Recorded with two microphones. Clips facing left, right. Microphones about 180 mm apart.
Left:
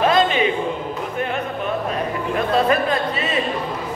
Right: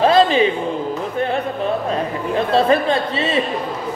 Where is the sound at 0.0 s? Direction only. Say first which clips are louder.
Right 4 dB; 30° right (ahead or behind).